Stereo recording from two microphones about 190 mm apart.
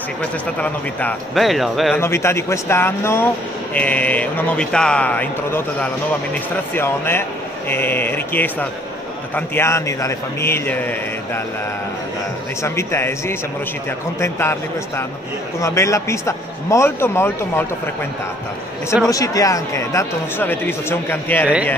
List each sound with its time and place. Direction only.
0.6 s speech: 5° left (ahead or behind)
2.0 s speech: 15° left (ahead or behind)
12.6 s speech: 15° left (ahead or behind)
19.0 s speech: 20° left (ahead or behind)